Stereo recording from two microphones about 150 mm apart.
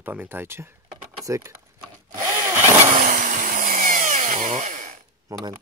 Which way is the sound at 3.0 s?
60° right (ahead or behind).